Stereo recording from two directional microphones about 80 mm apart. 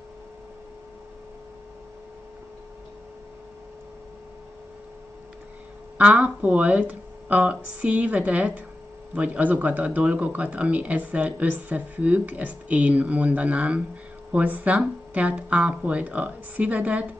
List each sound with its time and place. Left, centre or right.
5.9 s speech: centre